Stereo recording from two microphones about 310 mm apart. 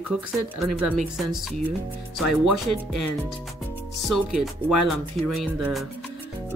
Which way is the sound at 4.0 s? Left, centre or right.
Centre.